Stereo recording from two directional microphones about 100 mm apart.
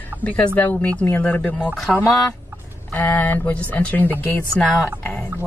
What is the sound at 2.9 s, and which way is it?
Speech, 15° left (ahead or behind).